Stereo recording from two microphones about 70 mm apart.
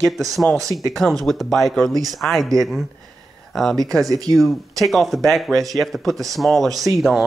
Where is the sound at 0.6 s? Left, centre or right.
Right.